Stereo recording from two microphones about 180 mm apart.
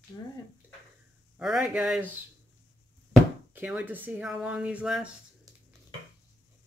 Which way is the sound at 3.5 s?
10° right (ahead or behind).